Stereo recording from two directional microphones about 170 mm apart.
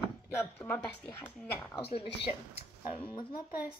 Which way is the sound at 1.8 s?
35° left (ahead or behind).